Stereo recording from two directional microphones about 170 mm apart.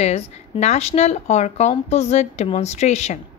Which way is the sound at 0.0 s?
40° left (ahead or behind).